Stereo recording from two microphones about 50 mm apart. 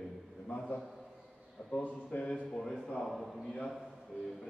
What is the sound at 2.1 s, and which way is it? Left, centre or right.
Speech, left.